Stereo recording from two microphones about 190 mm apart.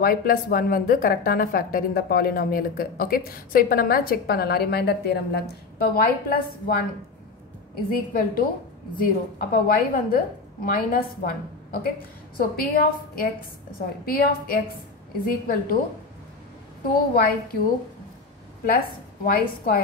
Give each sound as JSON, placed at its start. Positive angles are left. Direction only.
{"t": 0.0, "sound": "a woman's voice", "side_deg": 50}
{"t": 7.9, "sound": "a woman's voice", "side_deg": 50}
{"t": 16.8, "sound": "a woman's voice", "side_deg": 50}
{"t": 19.2, "sound": "a woman's voice", "side_deg": 50}